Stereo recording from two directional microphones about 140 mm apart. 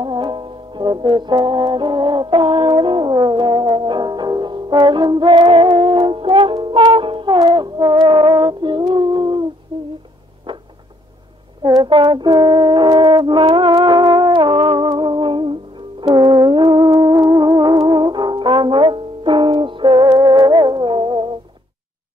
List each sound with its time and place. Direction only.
0.0 s brass instrument: 35° right (ahead or behind)
11.8 s music: 35° right (ahead or behind)